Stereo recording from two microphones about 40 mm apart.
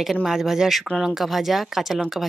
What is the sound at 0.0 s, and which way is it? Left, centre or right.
Speech, centre.